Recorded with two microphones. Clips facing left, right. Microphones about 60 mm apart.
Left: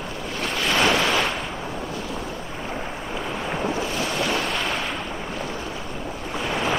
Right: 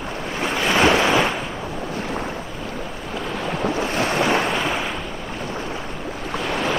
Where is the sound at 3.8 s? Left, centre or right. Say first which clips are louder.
Right 4 dB; right.